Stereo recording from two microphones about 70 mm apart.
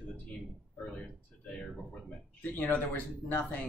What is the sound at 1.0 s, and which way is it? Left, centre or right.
Speech, centre.